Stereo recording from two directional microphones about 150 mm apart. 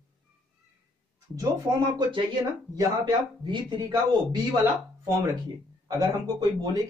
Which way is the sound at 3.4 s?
30° right (ahead or behind).